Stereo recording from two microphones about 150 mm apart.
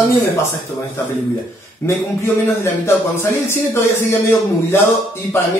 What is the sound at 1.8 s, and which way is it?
A man's voice, 15° left (ahead or behind).